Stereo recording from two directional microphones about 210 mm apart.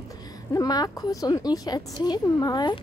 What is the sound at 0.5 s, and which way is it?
A woman's voice, 15° left (ahead or behind).